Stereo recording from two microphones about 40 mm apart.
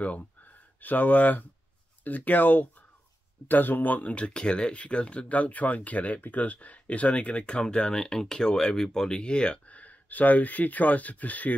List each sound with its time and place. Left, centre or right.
0.0 s speech: left
4.2 s speech: left
9.8 s speech: left